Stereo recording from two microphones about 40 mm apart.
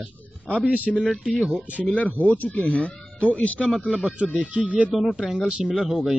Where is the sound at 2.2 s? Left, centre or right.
Left.